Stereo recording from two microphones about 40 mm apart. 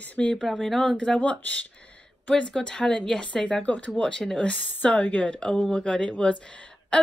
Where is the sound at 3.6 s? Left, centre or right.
Left.